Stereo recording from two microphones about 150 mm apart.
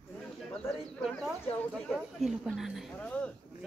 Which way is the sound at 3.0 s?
10° left (ahead or behind).